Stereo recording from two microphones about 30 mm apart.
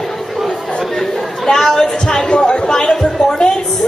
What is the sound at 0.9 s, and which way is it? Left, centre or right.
Chatter, centre.